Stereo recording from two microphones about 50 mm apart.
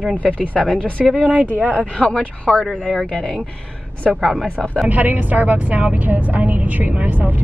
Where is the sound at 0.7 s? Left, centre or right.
Left.